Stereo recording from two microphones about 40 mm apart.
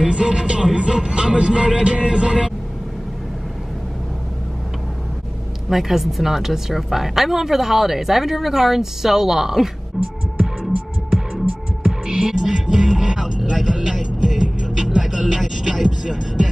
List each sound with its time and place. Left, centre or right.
0.0 s music: right
5.7 s a woman's voice: centre
10.0 s music: centre
11.8 s music: centre